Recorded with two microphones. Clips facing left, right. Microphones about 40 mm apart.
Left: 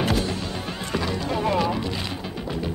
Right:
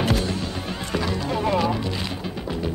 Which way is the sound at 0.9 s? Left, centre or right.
Centre.